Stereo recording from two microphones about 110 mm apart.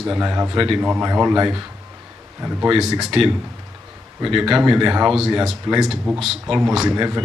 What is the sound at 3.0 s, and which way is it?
A man's voice, centre (ahead or behind).